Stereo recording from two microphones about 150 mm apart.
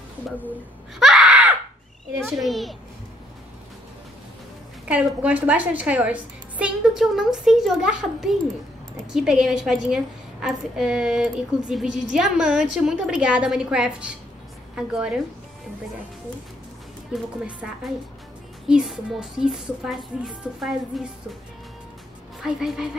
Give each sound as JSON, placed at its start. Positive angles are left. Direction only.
{"t": 0.9, "sound": "a sound", "side_deg": -5}
{"t": 2.2, "sound": "a woman's voice", "side_deg": 0}
{"t": 4.8, "sound": "a woman's voice", "side_deg": -10}
{"t": 17.1, "sound": "a woman's voice", "side_deg": -5}
{"t": 22.4, "sound": "a woman's voice", "side_deg": -5}